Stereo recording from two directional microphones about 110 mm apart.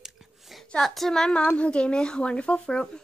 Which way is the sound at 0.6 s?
5° left (ahead or behind).